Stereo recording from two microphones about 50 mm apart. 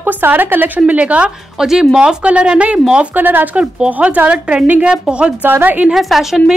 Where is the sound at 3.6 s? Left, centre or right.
Right.